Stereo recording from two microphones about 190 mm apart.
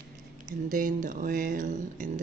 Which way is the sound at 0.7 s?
45° right (ahead or behind).